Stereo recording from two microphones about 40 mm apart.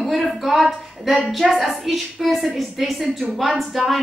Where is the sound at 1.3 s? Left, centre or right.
Centre.